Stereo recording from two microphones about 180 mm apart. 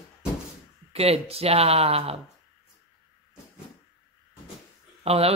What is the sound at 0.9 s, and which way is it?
A woman's voice, 35° right (ahead or behind).